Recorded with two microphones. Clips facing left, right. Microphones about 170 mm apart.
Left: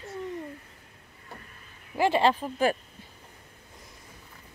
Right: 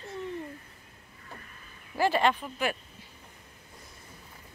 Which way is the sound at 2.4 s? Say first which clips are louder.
Left 6 dB; 40° left (ahead or behind).